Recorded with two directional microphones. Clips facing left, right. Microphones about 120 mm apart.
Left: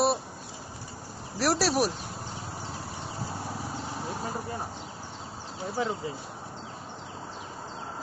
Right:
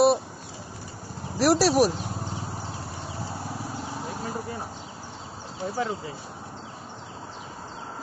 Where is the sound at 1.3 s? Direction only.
5° right (ahead or behind).